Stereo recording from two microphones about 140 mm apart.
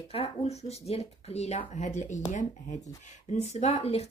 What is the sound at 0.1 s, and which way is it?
Speech, 45° left (ahead or behind).